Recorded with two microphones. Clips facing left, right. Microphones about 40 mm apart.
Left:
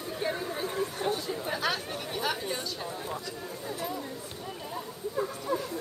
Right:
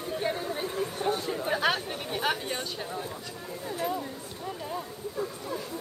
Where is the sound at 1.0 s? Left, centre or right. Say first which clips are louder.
Right 2 dB; right.